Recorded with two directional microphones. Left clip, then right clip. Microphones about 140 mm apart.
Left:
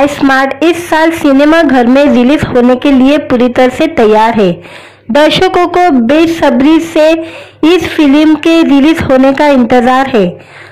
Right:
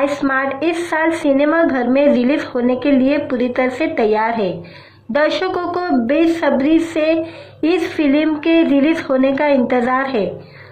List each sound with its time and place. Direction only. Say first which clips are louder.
0.0 s a woman's voice: left 9 dB; 45° left (ahead or behind)